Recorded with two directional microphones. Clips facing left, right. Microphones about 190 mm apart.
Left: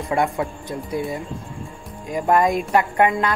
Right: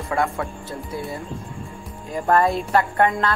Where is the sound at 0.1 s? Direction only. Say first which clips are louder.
Left 2 dB; 20° left (ahead or behind).